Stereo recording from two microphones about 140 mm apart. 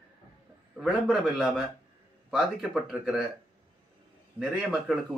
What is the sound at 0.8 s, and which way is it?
Speech, 5° right (ahead or behind).